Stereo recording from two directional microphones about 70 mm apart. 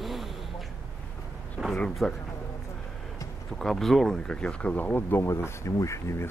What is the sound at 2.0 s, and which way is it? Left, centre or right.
Speech, centre.